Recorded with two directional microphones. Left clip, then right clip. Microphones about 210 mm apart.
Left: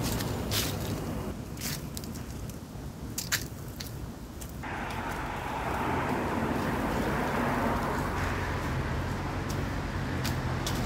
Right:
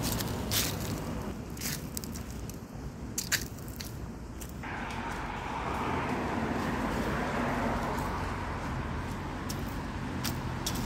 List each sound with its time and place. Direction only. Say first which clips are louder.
0.0 s vehicle: left 1 dB; 60° right (ahead or behind)
3.2 s biting: even; 35° right (ahead or behind)
4.8 s vehicle: left 2 dB; centre (ahead or behind)